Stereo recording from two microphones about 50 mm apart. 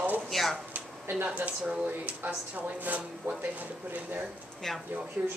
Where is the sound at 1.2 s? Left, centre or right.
Right.